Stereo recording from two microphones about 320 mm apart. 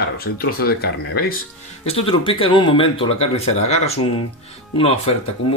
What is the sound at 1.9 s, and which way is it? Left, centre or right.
Speech, centre.